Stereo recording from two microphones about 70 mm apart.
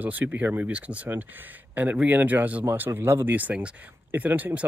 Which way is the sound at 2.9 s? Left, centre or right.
Right.